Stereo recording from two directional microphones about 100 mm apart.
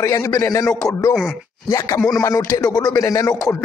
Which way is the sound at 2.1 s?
35° left (ahead or behind).